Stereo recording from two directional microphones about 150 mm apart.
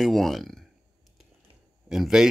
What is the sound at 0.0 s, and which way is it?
Speech, centre (ahead or behind).